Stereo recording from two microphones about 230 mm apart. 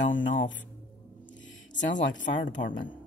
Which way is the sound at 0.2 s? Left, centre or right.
Left.